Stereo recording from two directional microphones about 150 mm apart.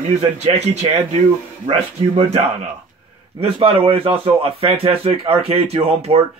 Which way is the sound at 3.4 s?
35° right (ahead or behind).